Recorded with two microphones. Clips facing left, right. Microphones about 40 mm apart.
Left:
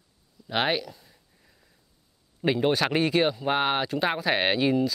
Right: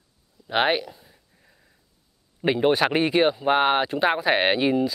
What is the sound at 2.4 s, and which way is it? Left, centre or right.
Speech, centre.